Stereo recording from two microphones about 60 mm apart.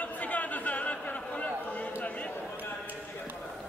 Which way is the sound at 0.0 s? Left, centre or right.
Left.